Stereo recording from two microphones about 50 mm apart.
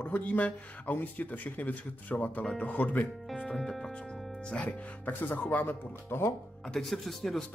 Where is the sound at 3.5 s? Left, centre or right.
Centre.